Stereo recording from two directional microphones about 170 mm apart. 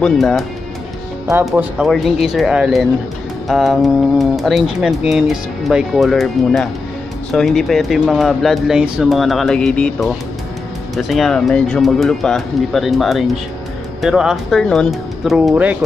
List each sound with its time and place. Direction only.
0.0 s speech: centre (ahead or behind)